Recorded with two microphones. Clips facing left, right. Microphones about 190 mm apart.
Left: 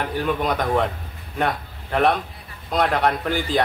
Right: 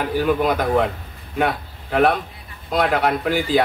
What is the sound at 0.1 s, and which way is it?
A man's voice, 5° right (ahead or behind).